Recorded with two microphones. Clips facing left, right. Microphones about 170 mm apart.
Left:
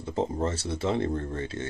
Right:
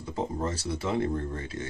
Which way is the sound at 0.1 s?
25° left (ahead or behind).